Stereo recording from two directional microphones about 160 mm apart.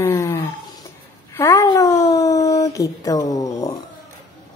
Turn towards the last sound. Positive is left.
turn(degrees=20)  # may be behind; listen again after turning